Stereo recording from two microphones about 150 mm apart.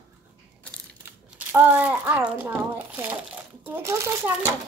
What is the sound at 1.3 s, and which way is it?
A child's voice, 10° right (ahead or behind).